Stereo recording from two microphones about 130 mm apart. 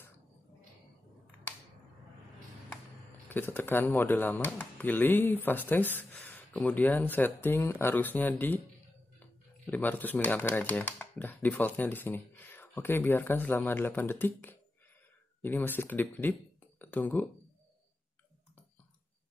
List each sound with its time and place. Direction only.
3.3 s speech: 15° left (ahead or behind)
9.7 s speech: 15° left (ahead or behind)